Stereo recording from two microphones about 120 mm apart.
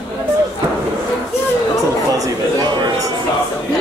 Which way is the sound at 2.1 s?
30° right (ahead or behind).